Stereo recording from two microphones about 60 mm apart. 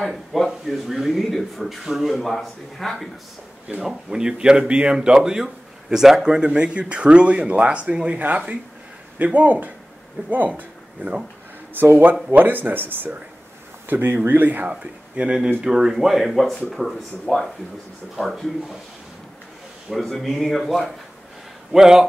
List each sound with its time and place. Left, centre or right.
0.0 s speech: centre
3.8 s speech: centre
9.2 s speech: right
11.8 s speech: right; by 18.5 s centre
19.9 s speech: centre
21.7 s speech: centre